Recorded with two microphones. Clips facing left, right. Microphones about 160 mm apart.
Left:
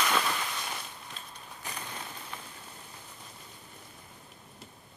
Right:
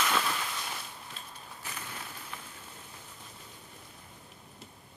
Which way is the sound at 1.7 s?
25° left (ahead or behind).